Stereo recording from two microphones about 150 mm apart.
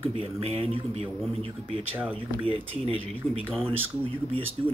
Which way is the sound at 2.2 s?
35° right (ahead or behind).